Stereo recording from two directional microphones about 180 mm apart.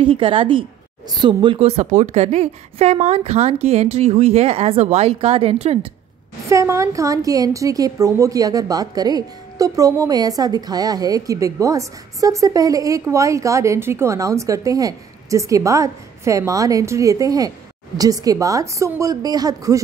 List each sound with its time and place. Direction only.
0.0 s a woman's voice: 30° right (ahead or behind)
6.5 s a woman's voice: 15° right (ahead or behind)